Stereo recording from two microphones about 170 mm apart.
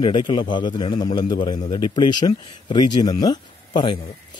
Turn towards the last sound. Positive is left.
turn(degrees=25)  # may be behind; listen again after turning